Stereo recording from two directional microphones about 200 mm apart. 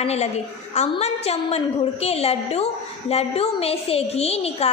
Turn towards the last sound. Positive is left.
turn(degrees=30)  # may be behind; listen again after turning